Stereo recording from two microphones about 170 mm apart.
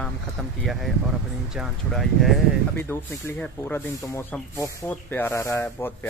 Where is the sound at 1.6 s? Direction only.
Centre (ahead or behind).